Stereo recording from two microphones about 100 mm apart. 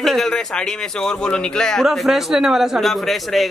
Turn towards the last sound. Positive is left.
turn(degrees=0)  # may be behind; listen again after turning